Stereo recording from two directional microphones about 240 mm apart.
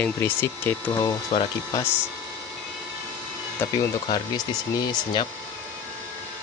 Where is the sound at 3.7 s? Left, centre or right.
Centre.